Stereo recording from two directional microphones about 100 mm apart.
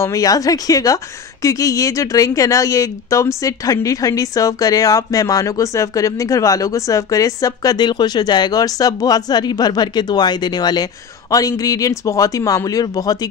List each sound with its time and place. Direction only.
0.0 s speech: 35° left (ahead or behind)